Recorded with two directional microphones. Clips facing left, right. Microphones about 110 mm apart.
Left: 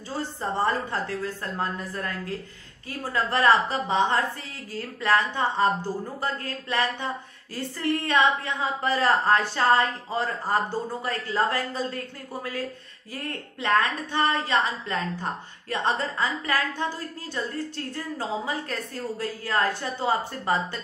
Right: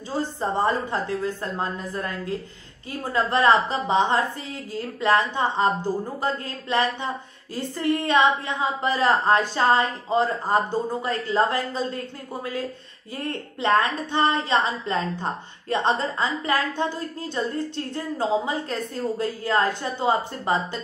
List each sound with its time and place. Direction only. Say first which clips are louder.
0.4 s a woman's voice: right 2 dB; 15° right (ahead or behind)
13.1 s a woman's voice: right 4 dB; 25° right (ahead or behind)